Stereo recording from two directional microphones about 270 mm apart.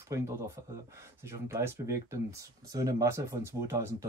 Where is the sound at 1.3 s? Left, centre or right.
Centre.